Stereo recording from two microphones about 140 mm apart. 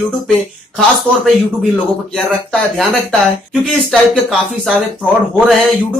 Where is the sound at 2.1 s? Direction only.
Centre (ahead or behind).